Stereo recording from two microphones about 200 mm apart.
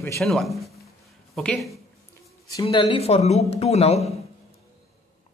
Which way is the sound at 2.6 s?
30° left (ahead or behind).